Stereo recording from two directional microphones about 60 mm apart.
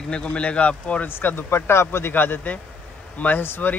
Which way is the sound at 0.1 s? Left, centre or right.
Centre.